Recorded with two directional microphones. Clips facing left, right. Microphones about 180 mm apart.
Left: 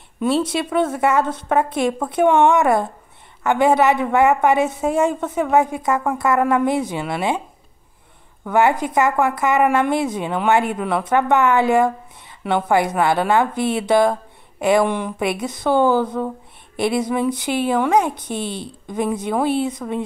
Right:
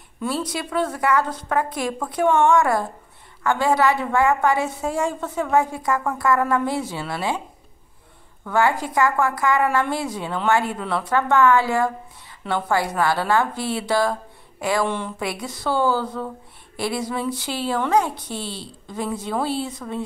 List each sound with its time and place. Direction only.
0.2 s a woman's voice: 25° left (ahead or behind)
8.5 s a woman's voice: 20° left (ahead or behind)